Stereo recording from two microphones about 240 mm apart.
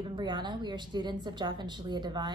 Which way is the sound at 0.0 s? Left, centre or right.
Centre.